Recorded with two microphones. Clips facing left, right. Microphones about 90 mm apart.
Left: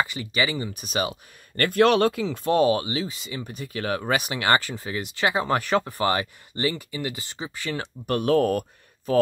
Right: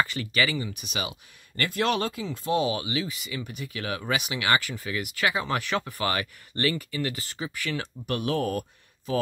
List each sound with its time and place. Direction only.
0.0 s speech: 20° left (ahead or behind)
0.6 s speech: 40° left (ahead or behind)
1.6 s speech: 55° left (ahead or behind); by 7.8 s 30° left (ahead or behind)
8.1 s speech: 45° left (ahead or behind)